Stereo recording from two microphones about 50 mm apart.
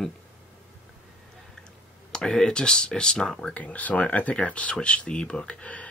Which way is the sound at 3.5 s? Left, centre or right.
Left.